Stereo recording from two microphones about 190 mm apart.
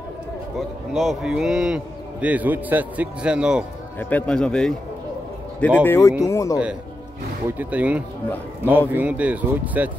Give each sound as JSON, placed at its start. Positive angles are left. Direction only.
{"t": 0.6, "sound": "a man's voice", "side_deg": 0}
{"t": 4.0, "sound": "a man's voice", "side_deg": 5}
{"t": 5.9, "sound": "speech", "side_deg": 15}
{"t": 7.5, "sound": "speech", "side_deg": -5}